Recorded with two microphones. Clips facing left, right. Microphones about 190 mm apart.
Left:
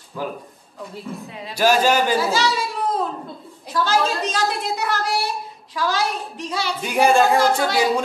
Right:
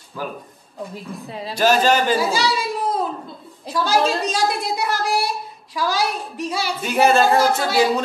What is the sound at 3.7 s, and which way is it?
A woman's voice, 10° right (ahead or behind).